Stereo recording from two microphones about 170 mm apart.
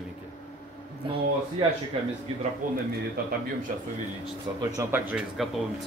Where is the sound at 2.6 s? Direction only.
55° right (ahead or behind).